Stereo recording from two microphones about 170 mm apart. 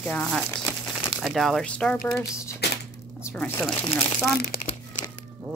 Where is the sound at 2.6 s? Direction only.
75° left (ahead or behind).